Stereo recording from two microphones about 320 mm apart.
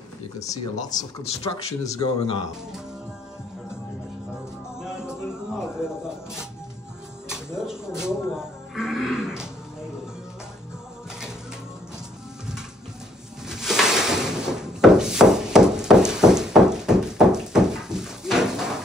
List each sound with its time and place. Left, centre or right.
0.4 s speech: centre
4.7 s music: centre
5.6 s speech: centre
13.5 s a sound: centre